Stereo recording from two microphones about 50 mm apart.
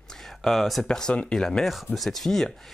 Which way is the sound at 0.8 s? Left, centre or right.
Centre.